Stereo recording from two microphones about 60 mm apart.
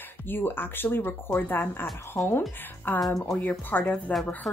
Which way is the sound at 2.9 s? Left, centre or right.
Left.